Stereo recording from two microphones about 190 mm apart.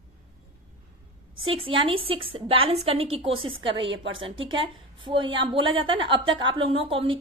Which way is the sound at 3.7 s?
75° right (ahead or behind).